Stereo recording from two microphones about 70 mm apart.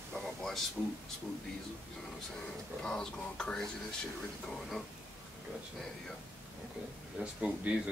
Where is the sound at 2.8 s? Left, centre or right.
Centre.